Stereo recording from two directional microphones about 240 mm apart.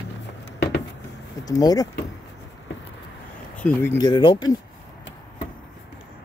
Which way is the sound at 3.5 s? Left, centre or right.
Centre.